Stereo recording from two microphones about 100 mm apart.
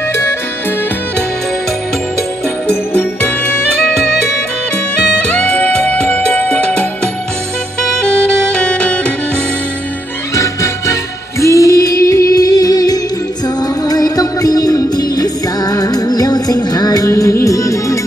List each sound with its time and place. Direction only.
2.7 s music: 15° left (ahead or behind)
5.3 s music: 10° left (ahead or behind)
8.5 s music: 10° left (ahead or behind)
10.3 s music: 30° left (ahead or behind)